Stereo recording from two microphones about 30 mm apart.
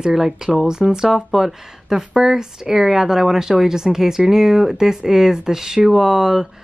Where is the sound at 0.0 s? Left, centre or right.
Centre.